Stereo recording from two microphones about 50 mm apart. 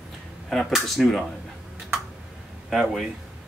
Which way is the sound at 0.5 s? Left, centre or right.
Centre.